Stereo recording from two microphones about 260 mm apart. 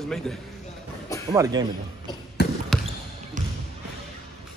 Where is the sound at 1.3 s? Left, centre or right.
Centre.